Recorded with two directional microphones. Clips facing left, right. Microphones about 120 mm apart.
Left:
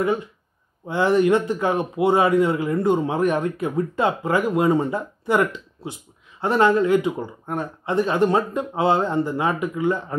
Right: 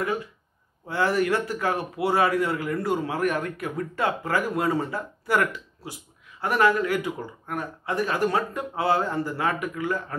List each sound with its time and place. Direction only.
0.0 s a man's voice: 25° left (ahead or behind)